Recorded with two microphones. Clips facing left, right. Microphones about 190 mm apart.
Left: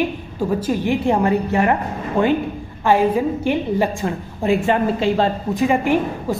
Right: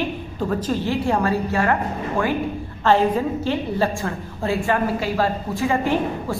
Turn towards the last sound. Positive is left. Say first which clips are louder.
# left 3 dB
turn(degrees=15)  # may be behind; listen again after turning